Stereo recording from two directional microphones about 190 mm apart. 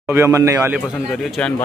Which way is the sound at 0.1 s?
15° right (ahead or behind).